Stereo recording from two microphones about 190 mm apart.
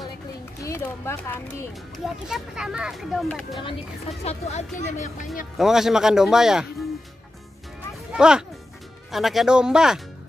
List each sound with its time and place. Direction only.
0.7 s a woman's voice: 15° left (ahead or behind)
2.2 s speech: 5° right (ahead or behind)
4.2 s speech: 35° left (ahead or behind)
5.6 s speech: centre (ahead or behind)
8.1 s speech: 5° right (ahead or behind)